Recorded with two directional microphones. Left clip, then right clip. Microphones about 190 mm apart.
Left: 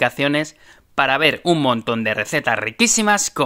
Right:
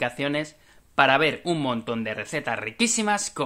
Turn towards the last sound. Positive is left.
turn(degrees=45)  # may be behind; listen again after turning